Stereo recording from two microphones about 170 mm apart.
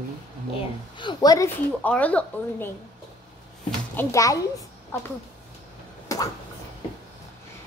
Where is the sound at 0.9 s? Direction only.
25° left (ahead or behind).